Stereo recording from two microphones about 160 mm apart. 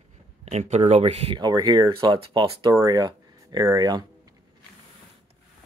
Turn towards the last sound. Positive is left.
turn(degrees=-25)  # may be behind; listen again after turning